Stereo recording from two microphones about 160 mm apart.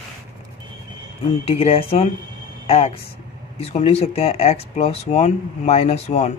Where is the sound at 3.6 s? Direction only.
40° left (ahead or behind).